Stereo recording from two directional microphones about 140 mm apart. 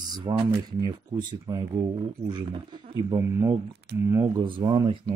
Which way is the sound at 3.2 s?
20° right (ahead or behind).